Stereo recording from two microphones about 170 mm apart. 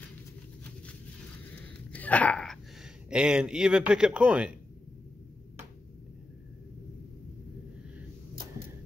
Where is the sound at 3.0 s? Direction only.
5° right (ahead or behind).